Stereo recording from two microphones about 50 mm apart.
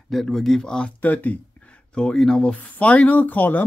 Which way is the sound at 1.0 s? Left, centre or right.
Left.